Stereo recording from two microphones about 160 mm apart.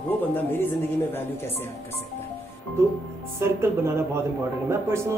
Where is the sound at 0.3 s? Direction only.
10° left (ahead or behind).